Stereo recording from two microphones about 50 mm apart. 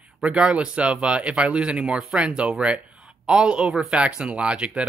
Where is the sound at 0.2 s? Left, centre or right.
Right.